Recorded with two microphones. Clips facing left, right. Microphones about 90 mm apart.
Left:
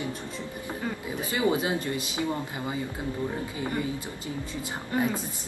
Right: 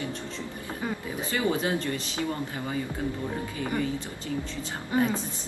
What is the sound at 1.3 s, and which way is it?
Speech, 15° left (ahead or behind).